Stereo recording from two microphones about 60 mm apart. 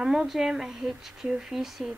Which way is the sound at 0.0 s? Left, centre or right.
Centre.